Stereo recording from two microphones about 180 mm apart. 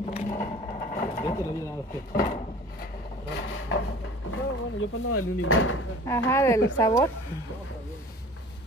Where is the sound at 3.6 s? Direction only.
90° left.